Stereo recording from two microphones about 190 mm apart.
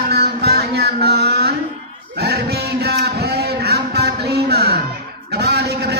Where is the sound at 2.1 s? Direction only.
60° right (ahead or behind).